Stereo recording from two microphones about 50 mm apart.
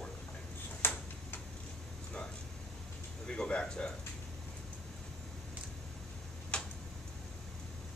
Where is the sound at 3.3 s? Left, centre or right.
Centre.